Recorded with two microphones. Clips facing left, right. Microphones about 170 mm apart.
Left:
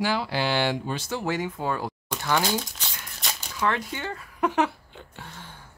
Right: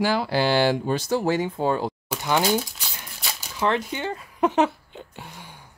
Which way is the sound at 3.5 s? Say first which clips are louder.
Right 3 dB; 25° right (ahead or behind).